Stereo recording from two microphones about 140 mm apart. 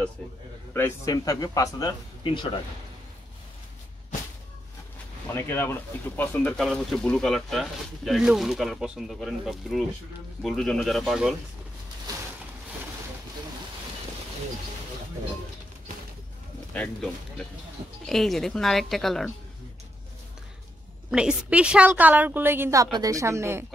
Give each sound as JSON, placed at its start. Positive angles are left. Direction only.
{"t": 0.7, "sound": "speech", "side_deg": 15}
{"t": 5.3, "sound": "speech", "side_deg": 15}
{"t": 6.3, "sound": "speech", "side_deg": 5}
{"t": 16.7, "sound": "speech", "side_deg": 5}
{"t": 21.1, "sound": "a woman's voice", "side_deg": -5}